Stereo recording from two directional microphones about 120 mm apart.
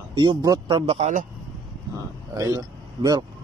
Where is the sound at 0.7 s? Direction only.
55° right (ahead or behind); by 1.3 s 85° right.